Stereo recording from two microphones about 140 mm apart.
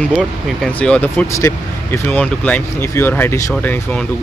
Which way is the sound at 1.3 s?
20° left (ahead or behind).